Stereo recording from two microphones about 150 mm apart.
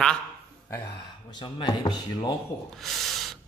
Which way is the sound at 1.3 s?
30° left (ahead or behind).